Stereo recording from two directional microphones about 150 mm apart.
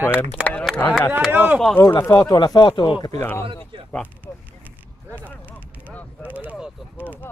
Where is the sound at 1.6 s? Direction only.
5° left (ahead or behind).